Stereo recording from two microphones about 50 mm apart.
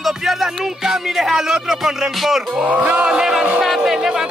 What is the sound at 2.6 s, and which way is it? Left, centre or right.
Speech, right.